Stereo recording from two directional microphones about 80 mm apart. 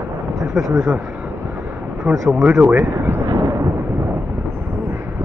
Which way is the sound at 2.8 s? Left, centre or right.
Right.